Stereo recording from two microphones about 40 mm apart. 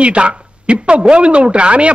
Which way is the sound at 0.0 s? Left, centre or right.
Right.